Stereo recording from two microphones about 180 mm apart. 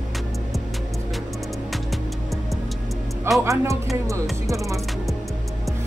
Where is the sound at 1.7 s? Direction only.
Centre (ahead or behind).